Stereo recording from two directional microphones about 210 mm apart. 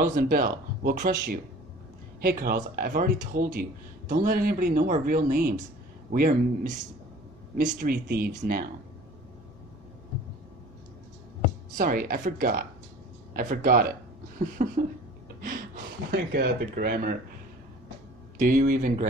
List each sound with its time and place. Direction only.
0.0 s speech: 40° right (ahead or behind)
11.7 s speech: 45° right (ahead or behind)
18.4 s speech: 40° right (ahead or behind)